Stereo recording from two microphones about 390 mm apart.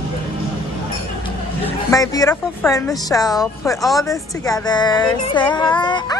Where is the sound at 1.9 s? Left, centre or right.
Centre.